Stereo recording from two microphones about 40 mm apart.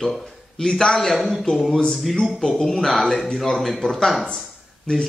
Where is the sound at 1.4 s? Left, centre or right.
Centre.